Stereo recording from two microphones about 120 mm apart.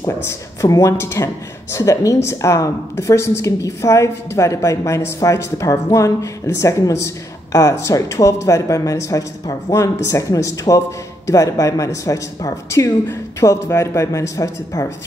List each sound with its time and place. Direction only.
0.2 s speech: 25° left (ahead or behind)